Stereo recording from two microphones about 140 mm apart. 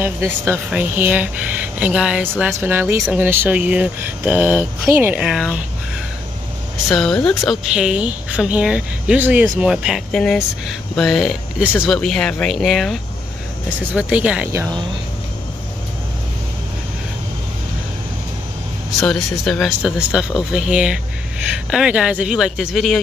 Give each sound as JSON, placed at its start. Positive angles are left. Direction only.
{"t": 0.0, "sound": "speech", "side_deg": -15}
{"t": 6.9, "sound": "speech", "side_deg": 5}
{"t": 7.6, "sound": "speech", "side_deg": -5}
{"t": 10.1, "sound": "speech", "side_deg": 5}
{"t": 13.9, "sound": "speech", "side_deg": -10}
{"t": 18.9, "sound": "speech", "side_deg": 0}